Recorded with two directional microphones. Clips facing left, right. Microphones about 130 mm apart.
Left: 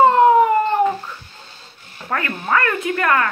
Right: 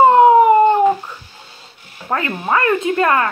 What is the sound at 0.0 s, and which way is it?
Dog, 20° right (ahead or behind).